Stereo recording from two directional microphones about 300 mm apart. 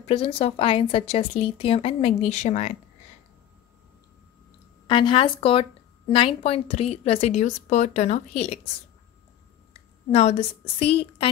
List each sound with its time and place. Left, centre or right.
0.0 s speech: centre
4.8 s speech: centre
10.1 s speech: centre